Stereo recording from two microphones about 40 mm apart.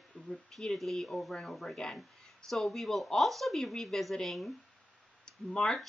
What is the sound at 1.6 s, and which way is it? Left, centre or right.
Speech, centre.